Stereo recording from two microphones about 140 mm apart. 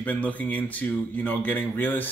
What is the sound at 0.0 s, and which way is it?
Speech, 10° left (ahead or behind).